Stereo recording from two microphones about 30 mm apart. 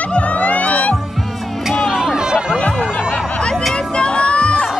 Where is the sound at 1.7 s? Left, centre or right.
Centre.